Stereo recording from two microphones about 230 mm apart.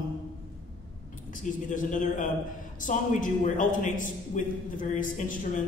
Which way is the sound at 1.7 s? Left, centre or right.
Left.